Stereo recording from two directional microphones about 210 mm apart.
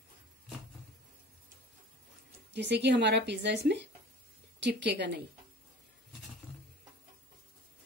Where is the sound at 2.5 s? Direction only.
55° right (ahead or behind).